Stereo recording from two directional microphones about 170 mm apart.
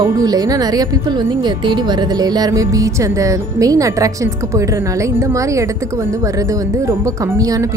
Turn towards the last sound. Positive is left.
turn(degrees=-20)  # may be behind; listen again after turning